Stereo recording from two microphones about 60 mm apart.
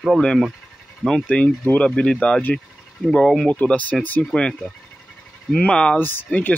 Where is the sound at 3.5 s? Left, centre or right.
Left.